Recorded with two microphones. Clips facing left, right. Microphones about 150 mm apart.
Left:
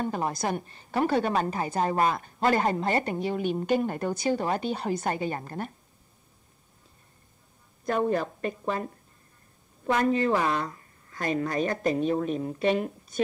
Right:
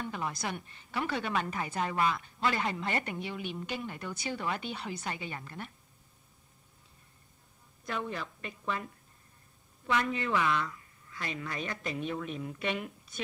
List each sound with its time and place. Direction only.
0.0 s a woman's voice: 40° left (ahead or behind)
7.8 s a woman's voice: 45° left (ahead or behind)